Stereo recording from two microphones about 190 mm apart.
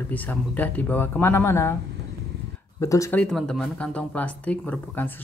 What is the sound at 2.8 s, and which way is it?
Speech, 15° left (ahead or behind).